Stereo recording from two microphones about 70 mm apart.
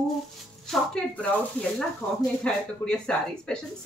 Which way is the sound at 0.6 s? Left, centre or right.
Centre.